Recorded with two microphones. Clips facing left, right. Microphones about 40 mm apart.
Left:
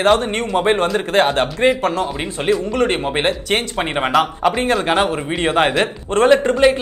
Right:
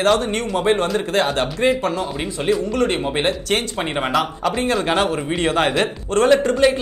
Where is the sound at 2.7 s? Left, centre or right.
Left.